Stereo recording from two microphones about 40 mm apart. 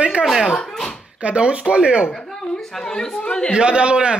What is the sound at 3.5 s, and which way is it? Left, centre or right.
Speech, right.